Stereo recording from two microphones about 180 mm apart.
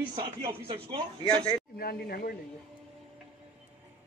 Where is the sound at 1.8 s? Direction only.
60° left (ahead or behind).